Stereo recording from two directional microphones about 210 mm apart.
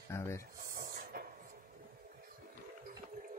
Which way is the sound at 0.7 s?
45° right (ahead or behind).